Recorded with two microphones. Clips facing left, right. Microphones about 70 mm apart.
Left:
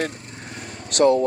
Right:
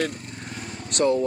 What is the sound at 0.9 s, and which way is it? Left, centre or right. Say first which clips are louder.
Speech: left 5 dB; left.